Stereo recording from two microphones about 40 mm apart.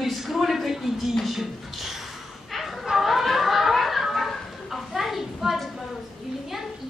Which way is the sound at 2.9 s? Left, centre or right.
Centre.